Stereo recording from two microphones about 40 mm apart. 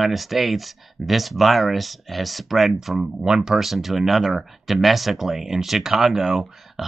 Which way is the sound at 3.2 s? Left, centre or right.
Centre.